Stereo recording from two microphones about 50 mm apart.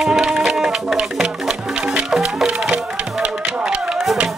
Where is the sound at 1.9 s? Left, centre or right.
Centre.